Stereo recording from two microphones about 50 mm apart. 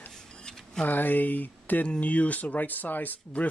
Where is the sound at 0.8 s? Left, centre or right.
Left.